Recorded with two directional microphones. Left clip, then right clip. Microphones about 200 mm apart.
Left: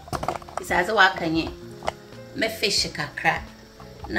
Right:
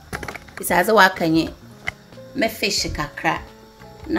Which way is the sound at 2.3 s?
40° right (ahead or behind).